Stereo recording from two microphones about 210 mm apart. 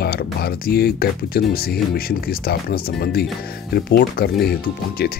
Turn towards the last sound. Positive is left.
turn(degrees=50)  # may be behind; listen again after turning